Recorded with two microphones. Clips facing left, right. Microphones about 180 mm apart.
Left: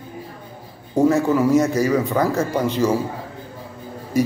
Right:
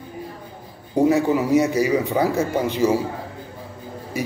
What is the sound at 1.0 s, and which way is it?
A man's voice, 15° right (ahead or behind).